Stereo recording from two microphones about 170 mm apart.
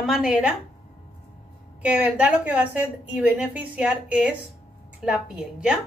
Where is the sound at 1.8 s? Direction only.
5° right (ahead or behind).